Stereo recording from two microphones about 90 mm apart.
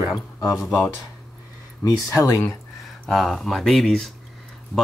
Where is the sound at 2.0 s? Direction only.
35° left (ahead or behind).